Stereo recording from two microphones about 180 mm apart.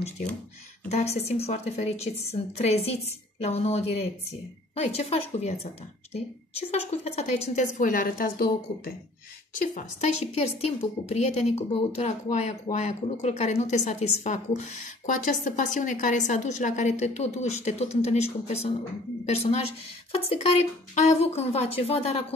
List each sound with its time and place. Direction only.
0.0 s a woman's voice: 45° left (ahead or behind)
9.6 s a woman's voice: 45° left (ahead or behind)
20.1 s a woman's voice: 35° left (ahead or behind)